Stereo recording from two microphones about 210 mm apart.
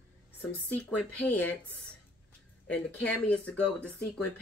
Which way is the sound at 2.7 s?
5° left (ahead or behind).